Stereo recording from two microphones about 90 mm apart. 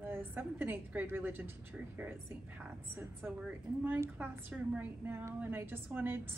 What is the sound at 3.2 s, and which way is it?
A woman's voice, 15° right (ahead or behind).